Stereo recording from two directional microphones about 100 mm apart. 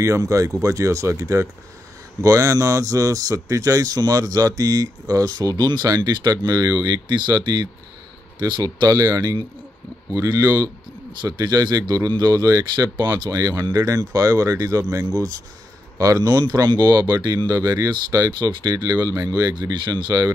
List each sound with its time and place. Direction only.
0.0 s speech: 30° right (ahead or behind)